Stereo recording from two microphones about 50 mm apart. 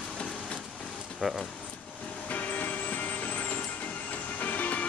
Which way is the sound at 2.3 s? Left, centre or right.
Left.